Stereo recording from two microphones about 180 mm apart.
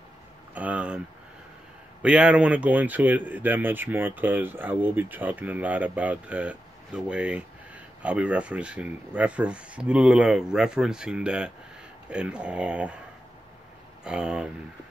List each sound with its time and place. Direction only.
0.6 s speech: 10° right (ahead or behind)
2.0 s speech: 5° right (ahead or behind)
14.0 s speech: 5° right (ahead or behind)